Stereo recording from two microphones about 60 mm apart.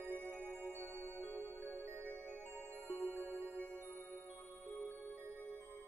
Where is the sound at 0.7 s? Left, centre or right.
Right.